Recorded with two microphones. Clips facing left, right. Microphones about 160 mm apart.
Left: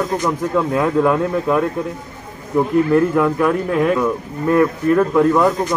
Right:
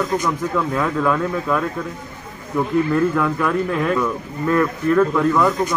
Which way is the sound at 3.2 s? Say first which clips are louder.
Left 3 dB; 10° left (ahead or behind).